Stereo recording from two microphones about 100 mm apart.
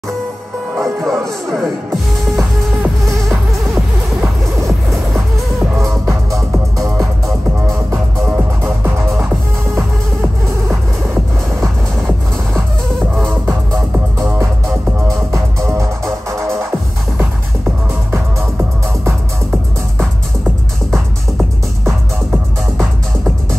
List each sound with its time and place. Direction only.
0.7 s music: centre (ahead or behind)
6.0 s music: 30° right (ahead or behind)
8.4 s music: 20° right (ahead or behind)
15.0 s music: 30° right (ahead or behind)
17.2 s music: 15° right (ahead or behind)
20.9 s music: 25° right (ahead or behind)